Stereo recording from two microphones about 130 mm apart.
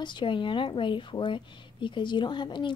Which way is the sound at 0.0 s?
35° left (ahead or behind).